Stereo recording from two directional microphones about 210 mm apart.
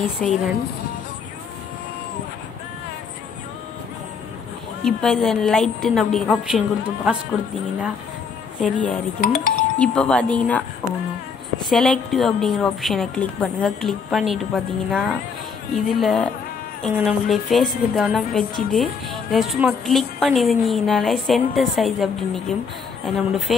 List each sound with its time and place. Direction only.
0.0 s a woman's voice: 5° left (ahead or behind)
4.8 s a woman's voice: centre (ahead or behind)
8.5 s a woman's voice: 5° left (ahead or behind)
9.2 s speech: 40° left (ahead or behind)
9.8 s a woman's voice: 5° left (ahead or behind)
11.7 s a woman's voice: centre (ahead or behind)